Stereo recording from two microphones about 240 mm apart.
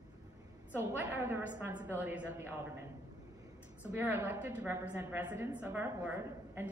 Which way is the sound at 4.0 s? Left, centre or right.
Centre.